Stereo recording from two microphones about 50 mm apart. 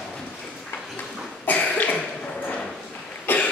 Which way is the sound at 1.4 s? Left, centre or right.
Left.